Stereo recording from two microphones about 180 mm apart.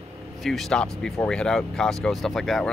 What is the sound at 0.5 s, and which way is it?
Speech, 5° left (ahead or behind).